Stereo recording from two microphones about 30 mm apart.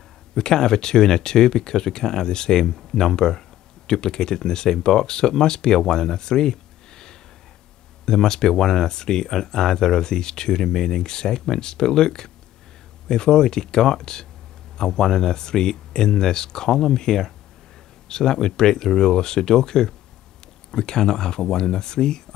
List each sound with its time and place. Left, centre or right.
0.4 s speech: left